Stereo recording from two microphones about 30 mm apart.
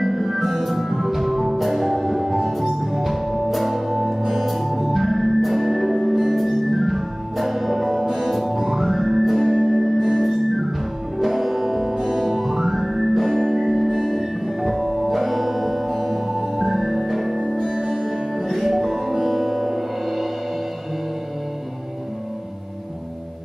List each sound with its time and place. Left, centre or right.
0.0 s music: centre
11.1 s music: centre
13.3 s music: centre
13.7 s music: centre
17.5 s music: centre
17.7 s music: centre